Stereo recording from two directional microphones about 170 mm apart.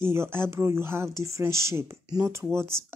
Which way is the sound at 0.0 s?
15° right (ahead or behind).